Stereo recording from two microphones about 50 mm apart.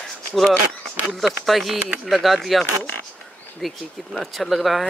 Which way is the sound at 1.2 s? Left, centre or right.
Centre.